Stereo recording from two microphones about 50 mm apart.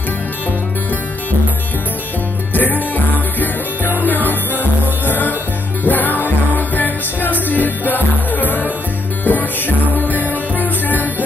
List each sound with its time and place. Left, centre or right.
2.5 s music: left